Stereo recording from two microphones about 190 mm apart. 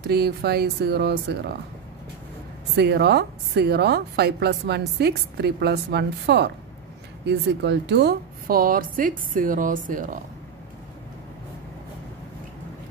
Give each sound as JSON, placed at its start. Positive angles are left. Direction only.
{"t": 0.0, "sound": "a woman's voice", "side_deg": -55}
{"t": 2.7, "sound": "a woman's voice", "side_deg": -60}